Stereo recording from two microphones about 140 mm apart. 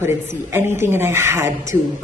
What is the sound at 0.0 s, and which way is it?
A woman's voice, 15° right (ahead or behind).